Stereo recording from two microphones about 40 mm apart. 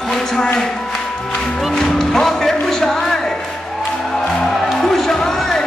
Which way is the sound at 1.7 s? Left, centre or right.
Centre.